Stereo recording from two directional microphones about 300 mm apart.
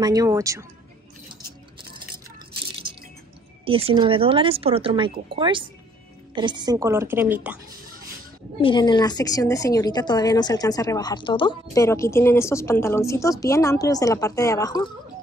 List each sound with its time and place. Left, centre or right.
0.0 s speech: centre
3.6 s speech: centre
8.5 s a woman's voice: centre